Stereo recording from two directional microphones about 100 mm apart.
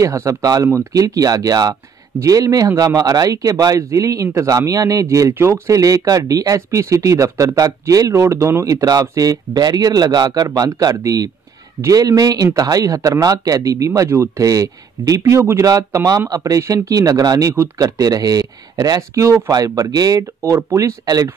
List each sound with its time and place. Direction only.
0.0 s speech: 30° right (ahead or behind)